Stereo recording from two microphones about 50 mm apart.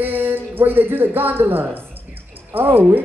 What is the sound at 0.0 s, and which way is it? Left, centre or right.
A man's voice, right.